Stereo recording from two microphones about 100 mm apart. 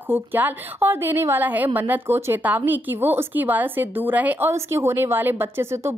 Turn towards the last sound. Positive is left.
turn(degrees=-25)  # may be behind; listen again after turning